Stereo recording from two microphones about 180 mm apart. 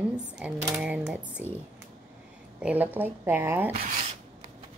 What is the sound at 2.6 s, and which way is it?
Speech, 10° right (ahead or behind).